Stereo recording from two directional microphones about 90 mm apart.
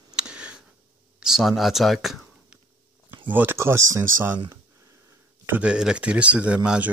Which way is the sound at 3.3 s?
20° right (ahead or behind).